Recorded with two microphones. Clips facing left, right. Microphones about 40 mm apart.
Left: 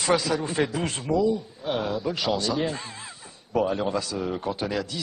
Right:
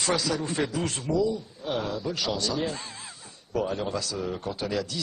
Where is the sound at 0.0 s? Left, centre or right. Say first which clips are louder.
Left 3 dB; centre.